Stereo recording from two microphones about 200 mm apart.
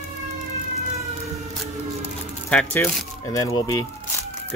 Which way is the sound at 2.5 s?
10° left (ahead or behind).